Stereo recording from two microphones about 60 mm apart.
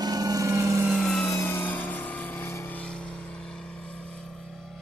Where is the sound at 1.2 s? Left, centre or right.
Left.